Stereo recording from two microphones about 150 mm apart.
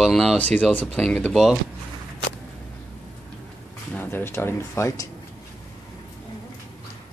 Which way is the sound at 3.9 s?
15° left (ahead or behind).